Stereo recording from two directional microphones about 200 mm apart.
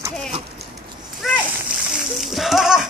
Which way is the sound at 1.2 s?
Centre (ahead or behind).